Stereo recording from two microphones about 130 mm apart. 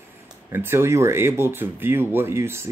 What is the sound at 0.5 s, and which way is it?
Speech, 15° right (ahead or behind).